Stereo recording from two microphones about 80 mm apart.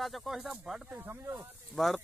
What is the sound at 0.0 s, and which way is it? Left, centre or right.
Speech, centre.